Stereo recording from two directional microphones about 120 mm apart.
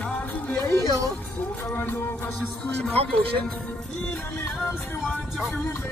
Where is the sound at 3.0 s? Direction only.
55° right (ahead or behind).